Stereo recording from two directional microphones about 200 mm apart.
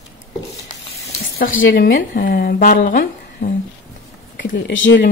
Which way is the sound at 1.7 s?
45° left (ahead or behind).